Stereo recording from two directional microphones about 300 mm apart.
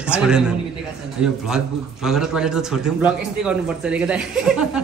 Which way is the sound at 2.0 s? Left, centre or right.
Centre.